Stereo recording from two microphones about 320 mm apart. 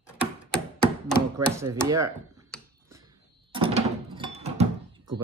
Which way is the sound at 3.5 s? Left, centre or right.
Centre.